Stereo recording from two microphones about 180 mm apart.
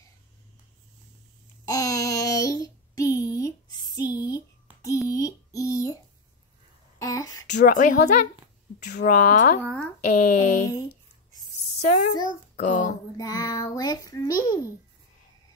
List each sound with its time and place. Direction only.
1.7 s child singing: 20° left (ahead or behind)
7.0 s a sound: 20° left (ahead or behind)
7.6 s speech: 50° left (ahead or behind)
11.8 s a child's voice: 50° left (ahead or behind)
13.2 s a child's voice: 20° left (ahead or behind)